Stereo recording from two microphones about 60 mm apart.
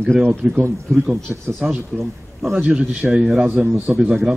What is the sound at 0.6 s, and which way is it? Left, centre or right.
Speech, right.